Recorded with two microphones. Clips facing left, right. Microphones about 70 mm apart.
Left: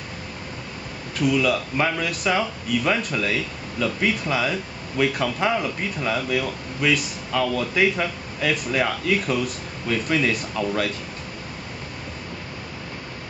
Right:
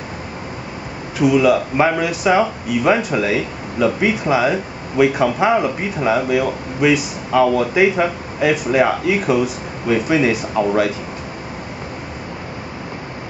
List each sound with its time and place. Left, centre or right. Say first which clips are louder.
1.1 s speech: right 7 dB; centre
4.1 s speech: right 7 dB; centre
7.2 s speech: right 9 dB; right